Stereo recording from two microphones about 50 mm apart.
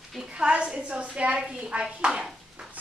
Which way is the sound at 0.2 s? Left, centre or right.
Centre.